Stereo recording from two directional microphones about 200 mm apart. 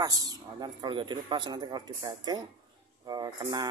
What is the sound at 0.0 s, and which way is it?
Speech, 20° right (ahead or behind).